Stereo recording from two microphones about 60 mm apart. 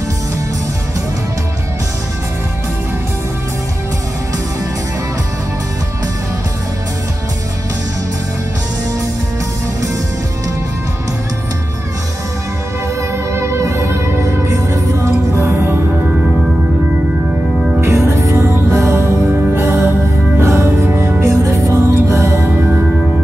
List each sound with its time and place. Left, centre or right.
13.3 s music: right
15.3 s music: right
17.8 s music: right
20.8 s music: right
21.2 s music: right